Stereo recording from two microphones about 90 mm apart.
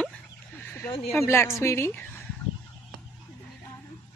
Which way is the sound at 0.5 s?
20° left (ahead or behind).